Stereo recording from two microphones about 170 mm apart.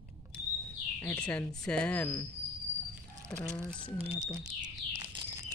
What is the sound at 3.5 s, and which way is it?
Bird, 5° left (ahead or behind).